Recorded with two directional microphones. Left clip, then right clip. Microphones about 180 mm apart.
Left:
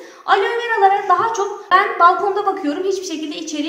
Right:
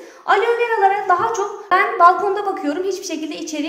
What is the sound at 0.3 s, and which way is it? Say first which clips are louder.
A woman's voice: even; 40° right (ahead or behind).